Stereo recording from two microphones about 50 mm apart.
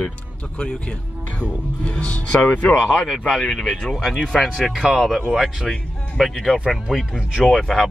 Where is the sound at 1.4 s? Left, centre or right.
Left.